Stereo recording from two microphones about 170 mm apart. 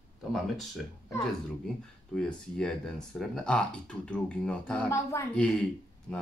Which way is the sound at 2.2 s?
5° left (ahead or behind).